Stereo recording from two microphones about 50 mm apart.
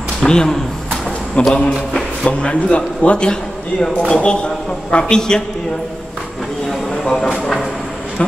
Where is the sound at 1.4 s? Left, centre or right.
Left.